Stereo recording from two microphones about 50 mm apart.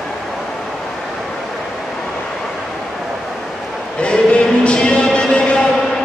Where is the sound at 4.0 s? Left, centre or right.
Left.